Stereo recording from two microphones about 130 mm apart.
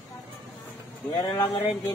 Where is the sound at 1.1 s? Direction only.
30° left (ahead or behind).